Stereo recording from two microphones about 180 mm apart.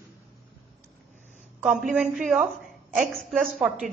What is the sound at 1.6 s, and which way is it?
A woman's voice, 5° right (ahead or behind).